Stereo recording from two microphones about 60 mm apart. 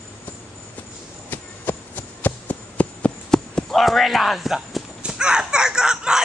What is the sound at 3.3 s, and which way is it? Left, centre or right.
Basketball bounce, centre.